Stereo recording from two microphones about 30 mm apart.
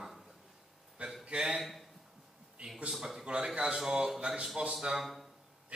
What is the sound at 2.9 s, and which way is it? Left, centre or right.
Speech, centre.